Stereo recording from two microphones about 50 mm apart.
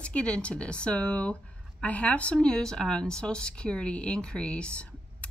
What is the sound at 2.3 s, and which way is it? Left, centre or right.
Speech, centre.